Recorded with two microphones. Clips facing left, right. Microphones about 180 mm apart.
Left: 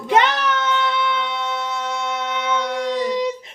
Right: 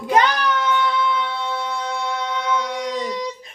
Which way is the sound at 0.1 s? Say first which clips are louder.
Even; 25° left (ahead or behind).